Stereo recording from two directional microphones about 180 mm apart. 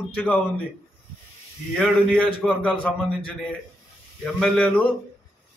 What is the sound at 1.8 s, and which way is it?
A man's voice, 5° left (ahead or behind).